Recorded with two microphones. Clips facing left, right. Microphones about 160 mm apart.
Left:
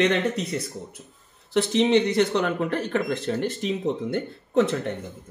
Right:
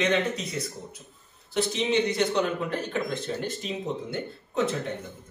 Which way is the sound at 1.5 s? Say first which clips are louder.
Left 5 dB; 75° left (ahead or behind).